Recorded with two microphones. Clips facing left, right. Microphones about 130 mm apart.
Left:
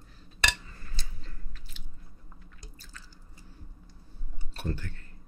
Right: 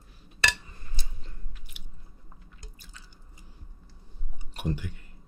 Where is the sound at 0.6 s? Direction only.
20° right (ahead or behind).